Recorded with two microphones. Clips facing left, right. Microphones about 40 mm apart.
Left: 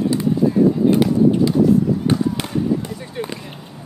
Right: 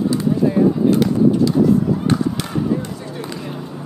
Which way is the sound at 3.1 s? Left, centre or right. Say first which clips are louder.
Left 4 dB; centre.